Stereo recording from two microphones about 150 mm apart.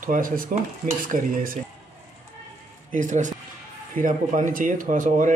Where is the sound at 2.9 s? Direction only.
55° right (ahead or behind).